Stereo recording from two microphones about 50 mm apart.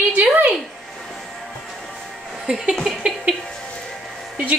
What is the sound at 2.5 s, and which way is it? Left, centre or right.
Speech, centre.